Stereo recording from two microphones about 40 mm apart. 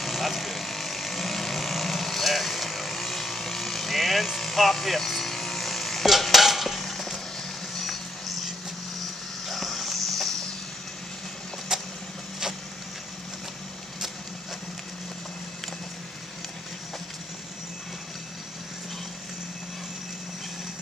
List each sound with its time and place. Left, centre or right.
0.0 s vehicle: centre
6.0 s stir: centre
9.5 s clip-clop: centre
11.7 s vehicle: centre